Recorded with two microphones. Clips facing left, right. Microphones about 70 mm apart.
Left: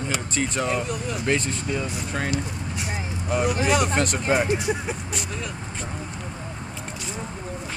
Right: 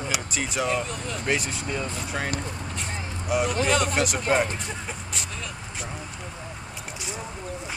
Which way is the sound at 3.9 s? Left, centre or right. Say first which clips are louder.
Left 1 dB; centre.